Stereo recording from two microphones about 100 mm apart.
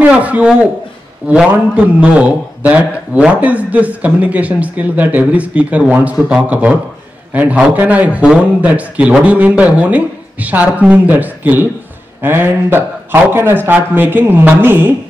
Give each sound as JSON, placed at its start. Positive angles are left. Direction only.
{"t": 0.0, "sound": "a man's voice", "side_deg": -15}